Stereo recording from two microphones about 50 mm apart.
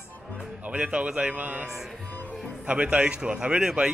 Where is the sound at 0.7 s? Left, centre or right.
Right.